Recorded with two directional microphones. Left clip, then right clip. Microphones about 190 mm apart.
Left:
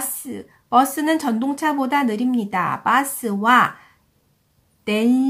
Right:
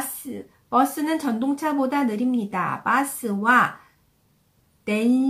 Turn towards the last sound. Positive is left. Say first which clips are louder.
# left 3 dB
turn(degrees=30)  # may be behind; listen again after turning